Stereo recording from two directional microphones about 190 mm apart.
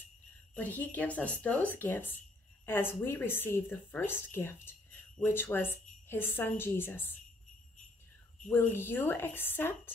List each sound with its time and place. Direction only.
0.6 s a woman's voice: 10° left (ahead or behind)
8.5 s a woman's voice: 10° left (ahead or behind)